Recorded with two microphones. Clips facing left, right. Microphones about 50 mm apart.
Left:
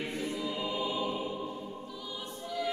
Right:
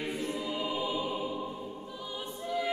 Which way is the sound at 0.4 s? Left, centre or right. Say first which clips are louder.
Right 1 dB; centre.